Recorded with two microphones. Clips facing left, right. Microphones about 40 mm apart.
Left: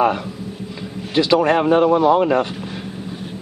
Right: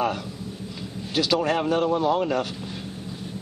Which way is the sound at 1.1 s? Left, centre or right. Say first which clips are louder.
Left 7 dB; left.